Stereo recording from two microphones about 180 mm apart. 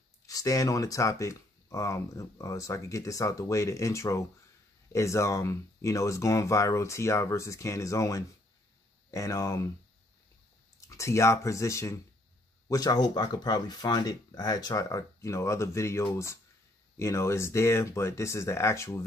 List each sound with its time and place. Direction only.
0.3 s speech: 20° left (ahead or behind)
10.9 s speech: 15° left (ahead or behind)